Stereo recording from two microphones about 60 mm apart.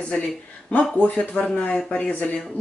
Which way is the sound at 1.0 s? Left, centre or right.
Left.